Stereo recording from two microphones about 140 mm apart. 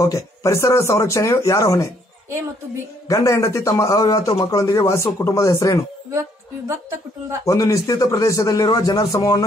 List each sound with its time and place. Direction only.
0.0 s a man's voice: 25° left (ahead or behind)
3.1 s a man's voice: 20° left (ahead or behind)
6.7 s a woman's voice: 20° right (ahead or behind)
7.4 s a man's voice: 25° left (ahead or behind)